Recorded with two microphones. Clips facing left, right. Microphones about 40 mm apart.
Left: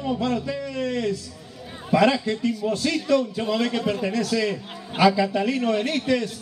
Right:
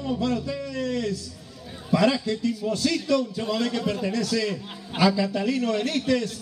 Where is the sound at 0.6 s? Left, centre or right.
Centre.